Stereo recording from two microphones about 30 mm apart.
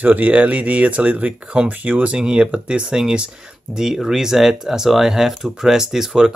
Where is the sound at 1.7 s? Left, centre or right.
Right.